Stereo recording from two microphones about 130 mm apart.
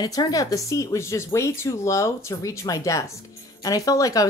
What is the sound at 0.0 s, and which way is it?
Speech, 30° left (ahead or behind).